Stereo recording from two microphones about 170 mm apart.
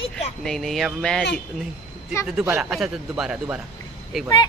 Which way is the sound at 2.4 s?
5° right (ahead or behind).